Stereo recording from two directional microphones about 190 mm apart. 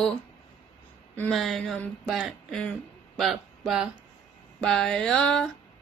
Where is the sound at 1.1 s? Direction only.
5° left (ahead or behind).